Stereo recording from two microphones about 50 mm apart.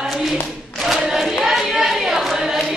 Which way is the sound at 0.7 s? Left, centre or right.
Centre.